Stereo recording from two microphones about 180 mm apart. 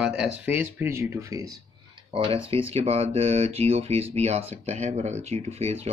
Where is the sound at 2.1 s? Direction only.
30° right (ahead or behind).